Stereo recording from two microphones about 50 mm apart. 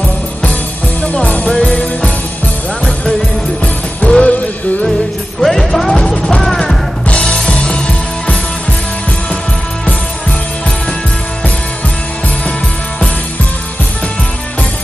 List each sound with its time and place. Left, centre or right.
1.0 s music: left
3.6 s music: left
5.4 s music: centre
7.1 s music: left